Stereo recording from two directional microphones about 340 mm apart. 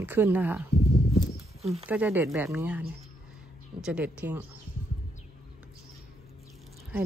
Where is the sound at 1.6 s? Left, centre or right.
Centre.